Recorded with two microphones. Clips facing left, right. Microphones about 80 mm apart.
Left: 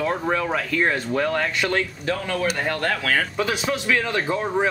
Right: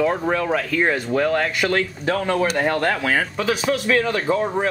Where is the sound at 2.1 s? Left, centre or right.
Right.